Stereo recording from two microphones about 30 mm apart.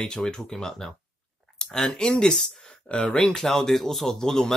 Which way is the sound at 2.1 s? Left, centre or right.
Left.